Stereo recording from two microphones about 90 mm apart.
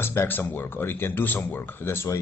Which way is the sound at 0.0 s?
25° left (ahead or behind).